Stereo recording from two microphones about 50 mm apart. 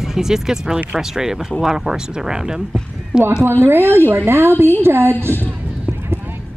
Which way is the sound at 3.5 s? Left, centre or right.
Right.